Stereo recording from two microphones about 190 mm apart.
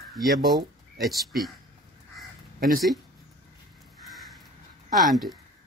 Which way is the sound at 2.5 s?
50° right (ahead or behind).